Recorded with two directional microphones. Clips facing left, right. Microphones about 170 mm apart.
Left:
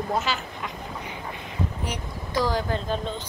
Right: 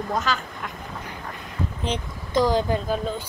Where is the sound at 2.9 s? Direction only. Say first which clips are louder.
Right 3 dB; 5° right (ahead or behind).